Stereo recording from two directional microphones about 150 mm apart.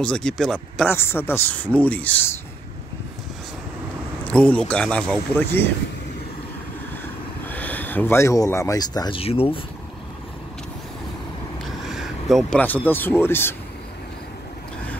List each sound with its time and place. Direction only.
0.0 s speech: 5° left (ahead or behind)
0.9 s speech: 15° left (ahead or behind)
4.3 s speech: 5° left (ahead or behind)
7.4 s speech: 10° left (ahead or behind); by 9.2 s 25° left (ahead or behind)
9.2 s speech: 40° left (ahead or behind)
11.9 s speech: centre (ahead or behind); by 13.6 s 15° left (ahead or behind)